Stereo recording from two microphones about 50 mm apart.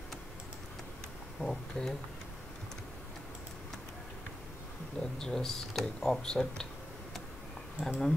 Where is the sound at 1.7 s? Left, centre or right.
Centre.